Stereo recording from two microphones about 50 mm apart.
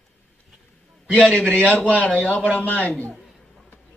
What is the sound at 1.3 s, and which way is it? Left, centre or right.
A man's voice, left.